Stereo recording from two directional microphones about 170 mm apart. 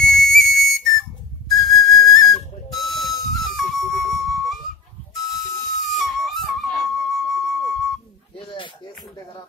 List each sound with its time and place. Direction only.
0.0 s whistle: centre (ahead or behind)
5.9 s music: centre (ahead or behind)
8.4 s a sound: 30° left (ahead or behind)